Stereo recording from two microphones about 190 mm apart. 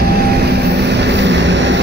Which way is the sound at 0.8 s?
65° right (ahead or behind).